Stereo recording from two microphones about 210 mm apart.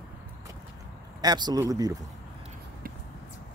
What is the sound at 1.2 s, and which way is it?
Speech, 20° right (ahead or behind).